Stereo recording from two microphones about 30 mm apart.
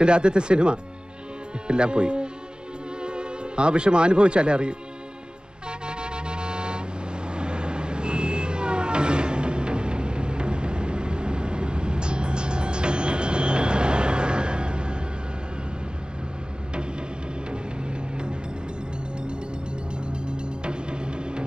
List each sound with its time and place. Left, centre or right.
0.0 s speech: right
5.7 s vehicle: right
17.5 s music: right
20.1 s music: right